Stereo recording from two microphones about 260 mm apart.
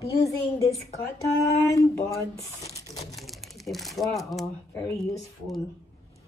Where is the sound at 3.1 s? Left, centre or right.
Centre.